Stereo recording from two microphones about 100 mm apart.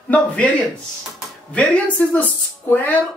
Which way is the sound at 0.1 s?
15° left (ahead or behind).